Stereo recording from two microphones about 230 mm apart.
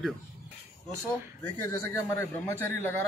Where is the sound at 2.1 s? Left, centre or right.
Centre.